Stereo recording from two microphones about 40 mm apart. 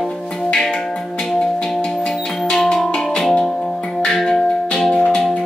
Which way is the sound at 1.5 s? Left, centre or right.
Centre.